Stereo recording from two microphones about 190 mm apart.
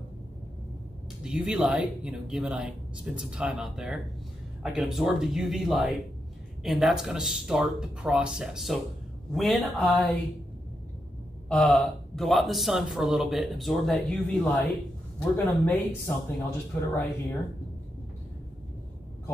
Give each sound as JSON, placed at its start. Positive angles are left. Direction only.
{"t": 1.2, "sound": "speech", "side_deg": -5}
{"t": 11.4, "sound": "speech", "side_deg": 5}